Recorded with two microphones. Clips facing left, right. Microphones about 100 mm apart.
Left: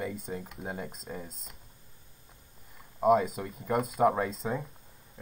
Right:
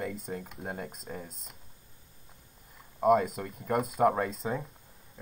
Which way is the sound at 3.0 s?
Centre (ahead or behind).